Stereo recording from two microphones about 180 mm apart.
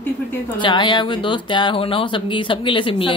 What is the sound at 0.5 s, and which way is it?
Speech, 25° left (ahead or behind).